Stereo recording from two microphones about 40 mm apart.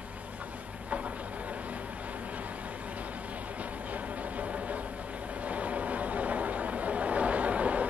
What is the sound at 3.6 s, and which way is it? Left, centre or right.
Music, right.